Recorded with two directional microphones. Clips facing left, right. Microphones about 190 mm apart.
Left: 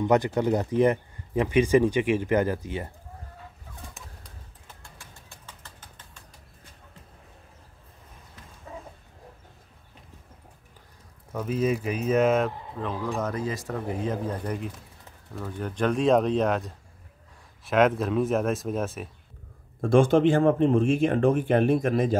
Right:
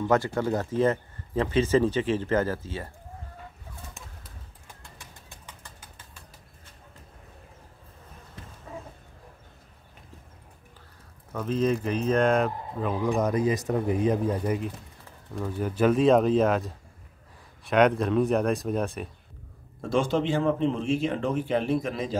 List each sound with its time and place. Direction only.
0.0 s speech: 20° left (ahead or behind)
5.5 s a sound: 10° right (ahead or behind)
11.3 s speech: 10° left (ahead or behind)
12.9 s speech: 15° right (ahead or behind); by 19.0 s centre (ahead or behind)
19.8 s speech: 50° left (ahead or behind)